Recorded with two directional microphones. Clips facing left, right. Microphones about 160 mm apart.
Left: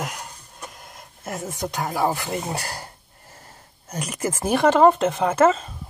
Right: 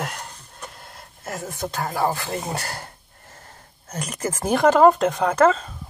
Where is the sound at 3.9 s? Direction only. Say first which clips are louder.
Left 1 dB; 10° left (ahead or behind).